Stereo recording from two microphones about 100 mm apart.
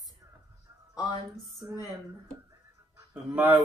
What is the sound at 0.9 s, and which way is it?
Speech, 40° left (ahead or behind).